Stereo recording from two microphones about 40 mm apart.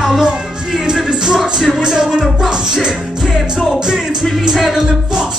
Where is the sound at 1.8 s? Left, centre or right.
Centre.